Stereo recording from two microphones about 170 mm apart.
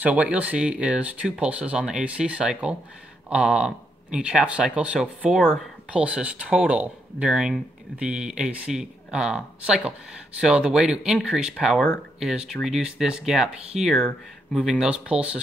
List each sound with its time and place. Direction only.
0.0 s speech: 5° right (ahead or behind)